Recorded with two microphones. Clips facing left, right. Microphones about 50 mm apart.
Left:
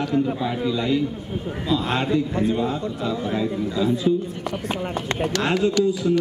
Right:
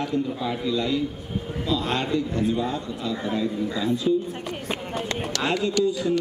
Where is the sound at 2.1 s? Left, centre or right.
Left.